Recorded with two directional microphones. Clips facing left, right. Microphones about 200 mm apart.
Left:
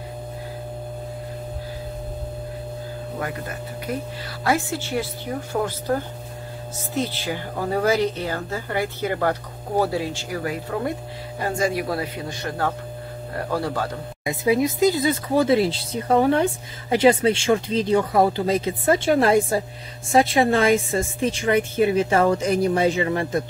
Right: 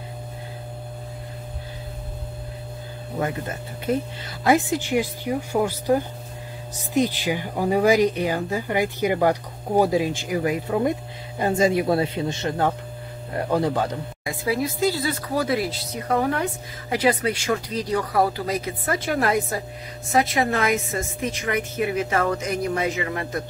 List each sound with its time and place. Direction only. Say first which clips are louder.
3.2 s speech: right 5 dB; 25° right (ahead or behind)
14.2 s speech: left 5 dB; 20° left (ahead or behind)